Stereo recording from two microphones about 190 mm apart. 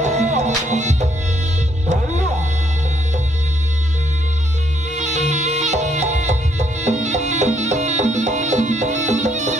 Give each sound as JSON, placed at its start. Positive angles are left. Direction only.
{"t": 0.0, "sound": "music", "side_deg": -40}
{"t": 4.9, "sound": "music", "side_deg": -35}